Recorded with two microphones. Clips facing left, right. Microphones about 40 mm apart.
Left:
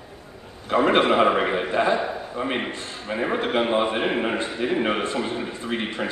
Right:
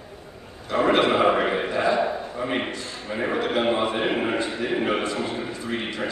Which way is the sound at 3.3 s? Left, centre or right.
Left.